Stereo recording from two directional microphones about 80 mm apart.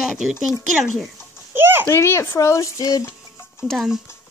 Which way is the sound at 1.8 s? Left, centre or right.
Left.